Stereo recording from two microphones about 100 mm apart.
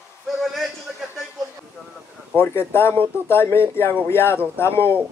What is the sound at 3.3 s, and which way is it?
Speech, 25° left (ahead or behind).